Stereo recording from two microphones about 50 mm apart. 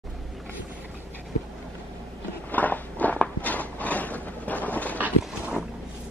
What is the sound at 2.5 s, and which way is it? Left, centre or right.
Biting, left.